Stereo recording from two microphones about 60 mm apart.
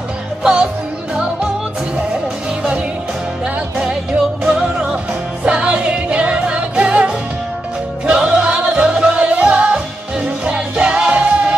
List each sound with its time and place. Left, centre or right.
0.4 s music: centre
3.7 s music: centre